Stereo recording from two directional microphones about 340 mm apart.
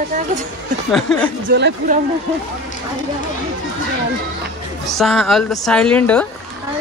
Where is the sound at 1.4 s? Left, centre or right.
Right.